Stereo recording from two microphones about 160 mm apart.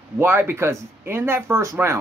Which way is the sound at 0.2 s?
15° right (ahead or behind).